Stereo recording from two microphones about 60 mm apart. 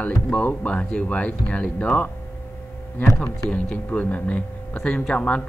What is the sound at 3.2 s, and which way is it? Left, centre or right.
Speech, left.